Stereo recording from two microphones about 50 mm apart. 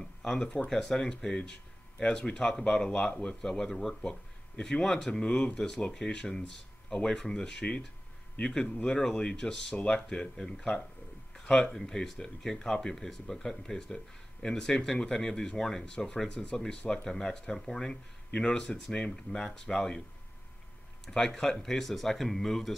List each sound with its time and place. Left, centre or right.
0.0 s speech: centre
2.9 s speech: left
10.0 s speech: centre
11.7 s speech: centre
21.0 s a sound: centre
21.3 s speech: centre